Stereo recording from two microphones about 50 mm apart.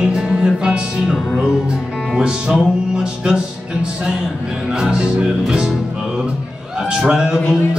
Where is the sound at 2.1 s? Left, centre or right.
Centre.